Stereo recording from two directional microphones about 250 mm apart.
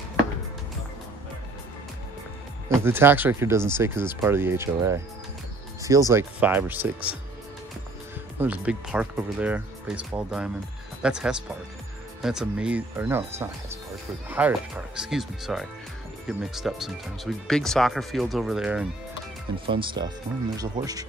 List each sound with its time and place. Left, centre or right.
2.7 s speech: centre
8.4 s speech: centre
19.7 s speech: centre